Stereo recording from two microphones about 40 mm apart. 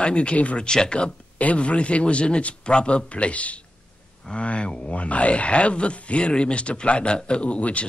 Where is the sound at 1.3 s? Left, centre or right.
Left.